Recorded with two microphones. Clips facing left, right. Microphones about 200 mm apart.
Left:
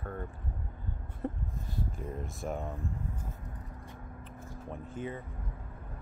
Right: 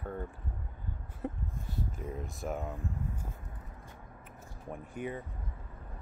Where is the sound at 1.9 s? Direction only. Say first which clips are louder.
Left 1 dB; centre (ahead or behind).